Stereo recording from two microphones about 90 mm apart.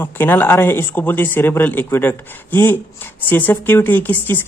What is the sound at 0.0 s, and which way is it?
A man's voice, 25° left (ahead or behind).